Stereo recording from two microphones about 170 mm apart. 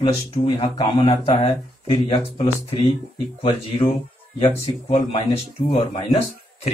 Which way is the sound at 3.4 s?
35° left (ahead or behind).